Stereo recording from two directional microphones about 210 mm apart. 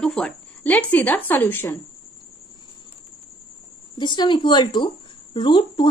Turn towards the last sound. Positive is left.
turn(degrees=20)  # may be behind; listen again after turning